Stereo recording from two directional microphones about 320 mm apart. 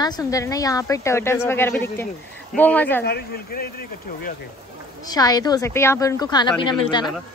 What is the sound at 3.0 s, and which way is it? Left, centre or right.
Speech, left.